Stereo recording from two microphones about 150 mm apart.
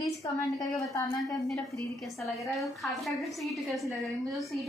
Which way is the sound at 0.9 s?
25° left (ahead or behind).